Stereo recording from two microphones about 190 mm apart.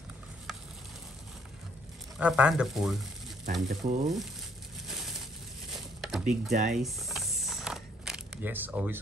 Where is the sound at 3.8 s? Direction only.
35° right (ahead or behind).